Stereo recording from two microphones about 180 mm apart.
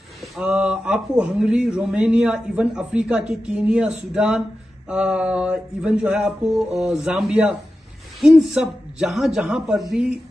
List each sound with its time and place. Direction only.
0.4 s speech: 5° right (ahead or behind)